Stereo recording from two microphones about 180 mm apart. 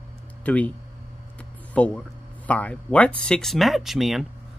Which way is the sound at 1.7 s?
5° left (ahead or behind).